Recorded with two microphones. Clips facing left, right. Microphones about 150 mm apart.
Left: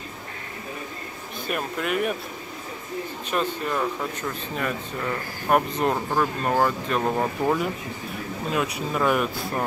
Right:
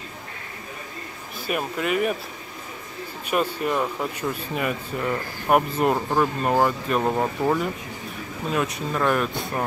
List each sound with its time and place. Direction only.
1.5 s speech: 5° right (ahead or behind)
3.3 s speech: 10° right (ahead or behind)